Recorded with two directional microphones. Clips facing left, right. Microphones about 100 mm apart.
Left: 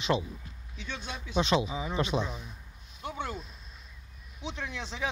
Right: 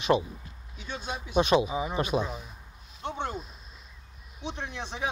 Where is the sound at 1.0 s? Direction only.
20° right (ahead or behind).